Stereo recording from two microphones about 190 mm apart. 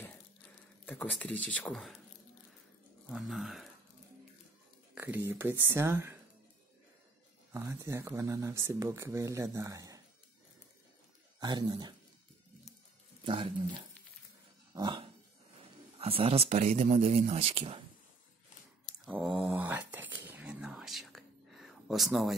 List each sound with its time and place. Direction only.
0.8 s speech: 10° left (ahead or behind)
3.1 s speech: centre (ahead or behind)
4.9 s speech: 10° right (ahead or behind)
7.5 s speech: 15° right (ahead or behind)
11.3 s speech: 20° right (ahead or behind)
13.2 s speech: 25° right (ahead or behind)
14.7 s dog: 25° right (ahead or behind)
15.6 s speech: 30° right (ahead or behind)
19.0 s a sound: 5° right (ahead or behind)